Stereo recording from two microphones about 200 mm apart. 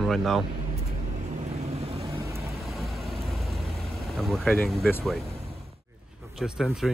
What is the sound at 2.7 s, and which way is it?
Vehicle, centre (ahead or behind).